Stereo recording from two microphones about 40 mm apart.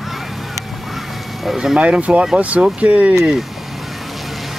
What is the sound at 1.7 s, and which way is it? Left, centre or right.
Speech, right.